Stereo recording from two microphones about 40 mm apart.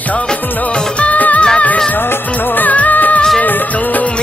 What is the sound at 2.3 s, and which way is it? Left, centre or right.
Music of bollywood, left.